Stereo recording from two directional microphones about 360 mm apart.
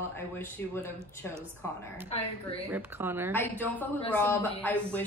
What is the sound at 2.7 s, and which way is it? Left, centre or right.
Speech, centre.